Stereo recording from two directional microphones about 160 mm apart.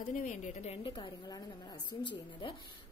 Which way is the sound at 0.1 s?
50° left (ahead or behind).